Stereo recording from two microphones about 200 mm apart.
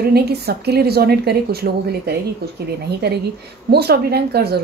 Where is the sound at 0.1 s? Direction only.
55° right (ahead or behind).